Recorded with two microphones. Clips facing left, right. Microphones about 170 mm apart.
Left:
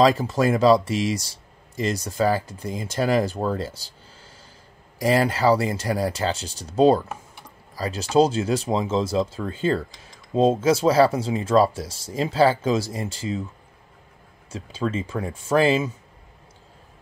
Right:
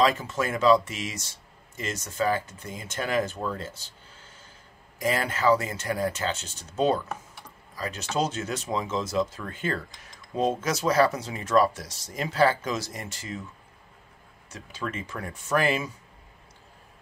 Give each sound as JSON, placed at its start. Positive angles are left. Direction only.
{"t": 0.0, "sound": "speech", "side_deg": 35}
{"t": 14.5, "sound": "speech", "side_deg": 30}